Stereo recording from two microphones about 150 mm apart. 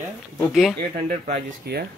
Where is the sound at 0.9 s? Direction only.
65° right (ahead or behind); by 1.9 s 90° right.